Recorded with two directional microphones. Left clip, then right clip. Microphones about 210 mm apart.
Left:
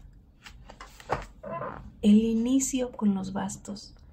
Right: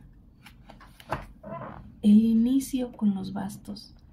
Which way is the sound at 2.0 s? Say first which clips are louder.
Right 2 dB; 25° left (ahead or behind).